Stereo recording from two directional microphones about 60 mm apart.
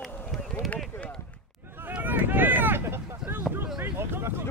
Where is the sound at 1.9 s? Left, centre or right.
Right.